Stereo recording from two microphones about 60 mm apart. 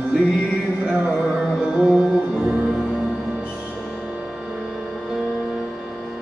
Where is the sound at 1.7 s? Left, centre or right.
Centre.